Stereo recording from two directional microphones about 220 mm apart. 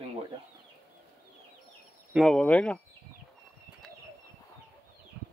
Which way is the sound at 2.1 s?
Centre (ahead or behind).